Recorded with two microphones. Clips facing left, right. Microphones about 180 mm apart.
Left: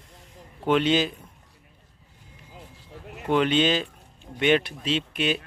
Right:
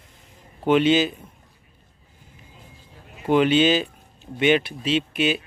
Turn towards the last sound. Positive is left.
turn(degrees=-5)  # may be behind; listen again after turning